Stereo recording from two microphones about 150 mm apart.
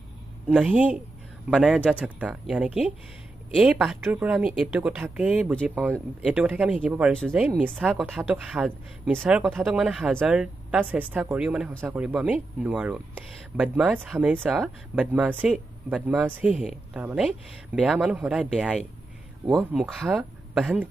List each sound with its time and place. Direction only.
0.5 s speech: 10° right (ahead or behind)
7.2 s speech: 5° left (ahead or behind)
7.4 s speech: 10° right (ahead or behind)